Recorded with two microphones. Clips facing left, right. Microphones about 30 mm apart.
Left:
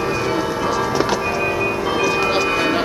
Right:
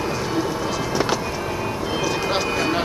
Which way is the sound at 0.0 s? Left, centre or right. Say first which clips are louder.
Left 3 dB; centre.